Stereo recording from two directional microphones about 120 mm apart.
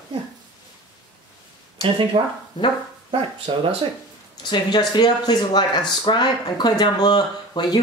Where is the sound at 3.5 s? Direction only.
45° right (ahead or behind).